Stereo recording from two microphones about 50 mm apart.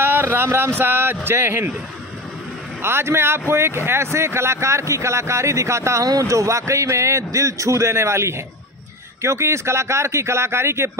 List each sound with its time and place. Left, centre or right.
0.0 s a sound: right
1.2 s speech: right
2.8 s speech: right